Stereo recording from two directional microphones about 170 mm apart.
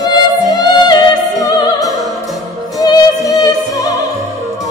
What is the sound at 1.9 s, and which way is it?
Opera, 20° right (ahead or behind).